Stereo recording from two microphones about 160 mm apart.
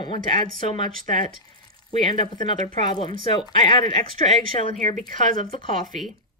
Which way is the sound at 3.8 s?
30° left (ahead or behind).